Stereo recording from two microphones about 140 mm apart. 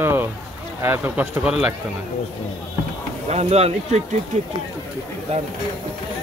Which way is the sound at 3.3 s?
50° right (ahead or behind).